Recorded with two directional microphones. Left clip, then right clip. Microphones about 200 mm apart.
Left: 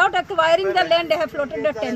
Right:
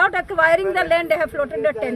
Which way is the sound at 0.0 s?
15° right (ahead or behind).